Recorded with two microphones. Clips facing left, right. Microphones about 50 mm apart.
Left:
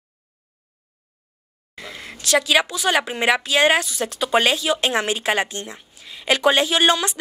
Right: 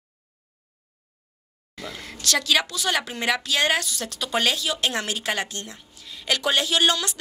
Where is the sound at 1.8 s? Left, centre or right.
Centre.